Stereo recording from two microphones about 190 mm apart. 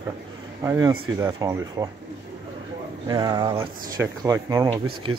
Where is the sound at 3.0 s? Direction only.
20° right (ahead or behind).